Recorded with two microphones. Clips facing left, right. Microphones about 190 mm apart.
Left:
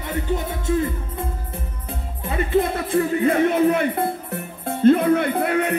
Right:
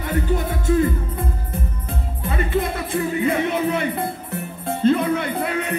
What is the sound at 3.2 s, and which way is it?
Speech, 50° left (ahead or behind).